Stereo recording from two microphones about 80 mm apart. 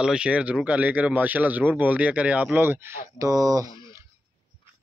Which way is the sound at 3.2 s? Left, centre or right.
Right.